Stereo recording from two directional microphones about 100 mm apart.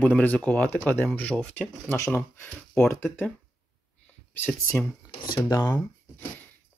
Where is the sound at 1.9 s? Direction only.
25° left (ahead or behind).